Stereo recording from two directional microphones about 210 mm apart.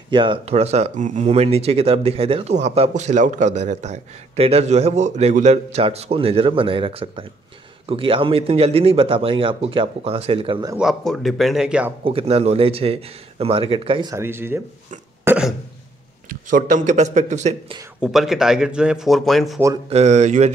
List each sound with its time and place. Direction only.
0.1 s speech: 25° right (ahead or behind)
10.8 s speech: centre (ahead or behind)
12.0 s speech: 25° right (ahead or behind)
14.1 s speech: 10° right (ahead or behind)
16.3 s speech: 40° right (ahead or behind)
18.0 s speech: centre (ahead or behind)
19.9 s speech: 30° right (ahead or behind)